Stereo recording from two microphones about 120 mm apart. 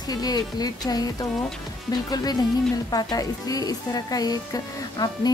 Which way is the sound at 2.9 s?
35° left (ahead or behind).